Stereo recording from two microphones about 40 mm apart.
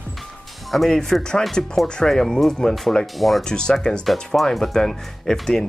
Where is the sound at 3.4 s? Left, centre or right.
Centre.